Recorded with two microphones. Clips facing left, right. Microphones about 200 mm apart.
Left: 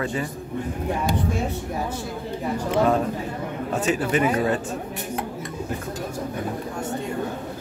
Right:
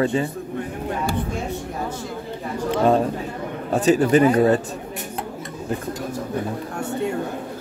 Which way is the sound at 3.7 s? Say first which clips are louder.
Right 7 dB; 35° right (ahead or behind).